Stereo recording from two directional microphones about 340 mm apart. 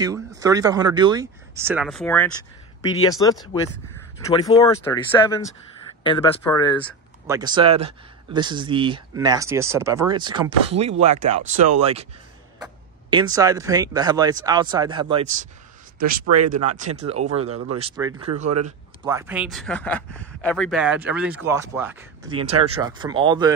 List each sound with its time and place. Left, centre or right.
0.0 s speech: centre
7.2 s speech: centre
13.1 s speech: centre
16.0 s a man's voice: right
16.7 s speech: centre
22.3 s speech: right
22.6 s speech: centre